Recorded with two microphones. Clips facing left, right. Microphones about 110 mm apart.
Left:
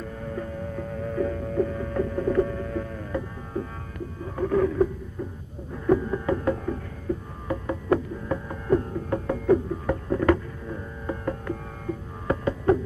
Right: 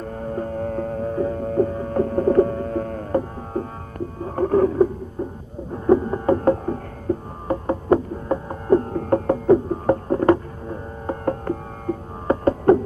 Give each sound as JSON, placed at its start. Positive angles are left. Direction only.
{"t": 0.0, "sound": "music", "side_deg": -40}
{"t": 4.2, "sound": "a sound", "side_deg": -40}
{"t": 5.7, "sound": "knock", "side_deg": -35}
{"t": 9.5, "sound": "music", "side_deg": -40}